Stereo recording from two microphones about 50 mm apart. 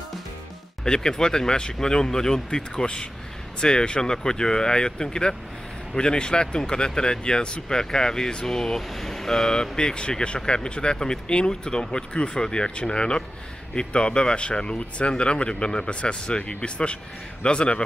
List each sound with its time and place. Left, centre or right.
0.8 s speech: centre